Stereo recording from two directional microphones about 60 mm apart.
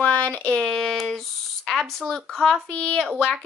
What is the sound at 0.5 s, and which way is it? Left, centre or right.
Speech, centre.